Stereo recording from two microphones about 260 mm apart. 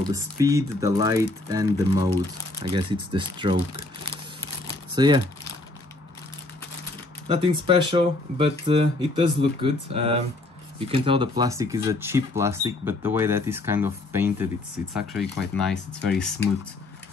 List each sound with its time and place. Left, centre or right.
0.1 s speech: centre
4.9 s speech: centre
7.2 s speech: centre